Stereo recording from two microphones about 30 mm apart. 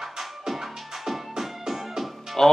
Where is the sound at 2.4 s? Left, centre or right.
Centre.